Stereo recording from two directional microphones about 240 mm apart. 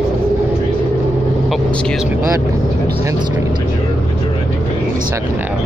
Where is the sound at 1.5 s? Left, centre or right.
Centre.